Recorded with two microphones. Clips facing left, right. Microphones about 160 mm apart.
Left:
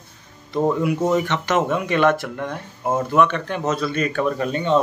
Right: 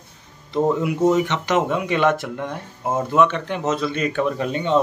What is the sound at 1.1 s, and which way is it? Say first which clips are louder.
Speech: even; 20° right (ahead or behind).